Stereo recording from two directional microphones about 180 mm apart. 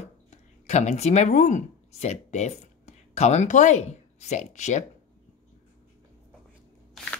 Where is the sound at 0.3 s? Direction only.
40° left (ahead or behind).